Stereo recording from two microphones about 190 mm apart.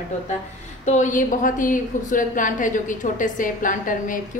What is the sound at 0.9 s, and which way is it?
A woman's voice, 40° left (ahead or behind).